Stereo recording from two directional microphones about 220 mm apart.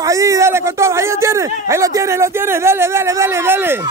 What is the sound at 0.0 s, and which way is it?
Speech, 15° right (ahead or behind).